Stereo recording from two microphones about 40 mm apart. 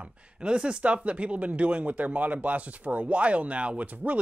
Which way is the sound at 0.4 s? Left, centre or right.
Right.